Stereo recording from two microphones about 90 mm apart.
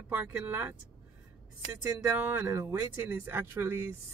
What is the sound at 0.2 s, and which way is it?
Speech, 20° right (ahead or behind).